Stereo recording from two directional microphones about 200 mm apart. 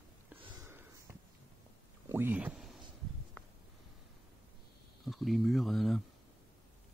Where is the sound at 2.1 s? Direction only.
10° right (ahead or behind).